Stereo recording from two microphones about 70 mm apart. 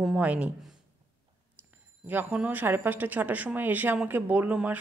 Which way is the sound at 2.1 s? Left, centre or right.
Right.